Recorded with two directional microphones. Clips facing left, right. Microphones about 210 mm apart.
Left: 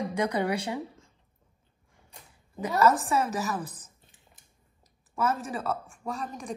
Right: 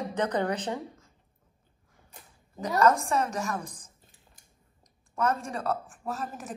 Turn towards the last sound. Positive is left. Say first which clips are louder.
# left 1 dB
turn(degrees=-5)  # may be behind; listen again after turning